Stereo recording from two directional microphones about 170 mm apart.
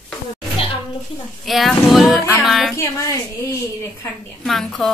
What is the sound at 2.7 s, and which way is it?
Speech, 20° left (ahead or behind).